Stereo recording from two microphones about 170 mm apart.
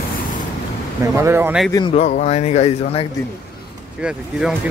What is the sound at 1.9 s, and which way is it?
Speech, 45° left (ahead or behind).